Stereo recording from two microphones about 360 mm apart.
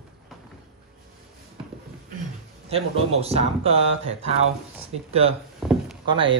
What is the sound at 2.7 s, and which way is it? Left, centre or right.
Speech, centre.